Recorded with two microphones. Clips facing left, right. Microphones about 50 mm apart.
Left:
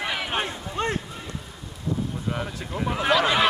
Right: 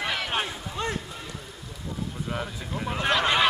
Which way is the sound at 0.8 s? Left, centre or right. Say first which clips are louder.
Left 4 dB; left.